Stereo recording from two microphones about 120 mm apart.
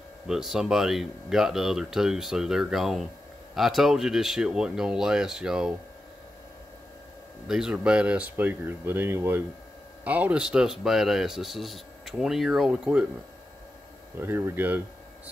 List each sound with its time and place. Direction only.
0.3 s speech: 5° right (ahead or behind)
7.4 s speech: 5° right (ahead or behind)
14.1 s speech: 20° right (ahead or behind)